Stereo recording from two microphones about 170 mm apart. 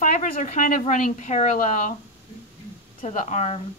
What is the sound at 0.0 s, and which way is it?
A woman's voice, 50° left (ahead or behind).